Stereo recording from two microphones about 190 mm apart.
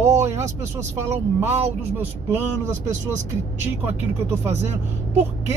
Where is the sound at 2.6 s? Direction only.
40° right (ahead or behind).